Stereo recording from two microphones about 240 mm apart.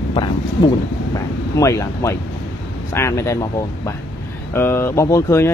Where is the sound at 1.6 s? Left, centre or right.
Centre.